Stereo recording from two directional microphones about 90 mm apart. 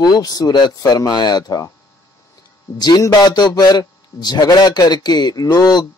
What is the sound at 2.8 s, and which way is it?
A man's voice, 50° left (ahead or behind).